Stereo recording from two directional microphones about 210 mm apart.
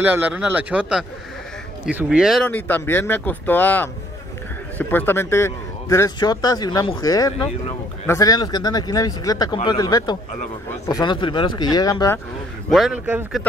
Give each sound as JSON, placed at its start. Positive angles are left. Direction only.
{"t": 0.0, "sound": "a man's voice", "side_deg": -10}
{"t": 12.6, "sound": "speech", "side_deg": 0}